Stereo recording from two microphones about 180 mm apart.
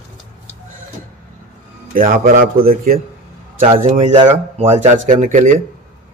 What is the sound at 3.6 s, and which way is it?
Speech, 35° right (ahead or behind).